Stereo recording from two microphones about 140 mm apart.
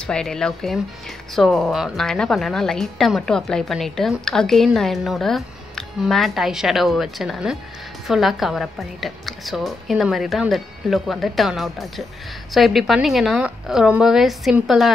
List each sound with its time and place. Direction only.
0.0 s a woman's voice: 5° left (ahead or behind)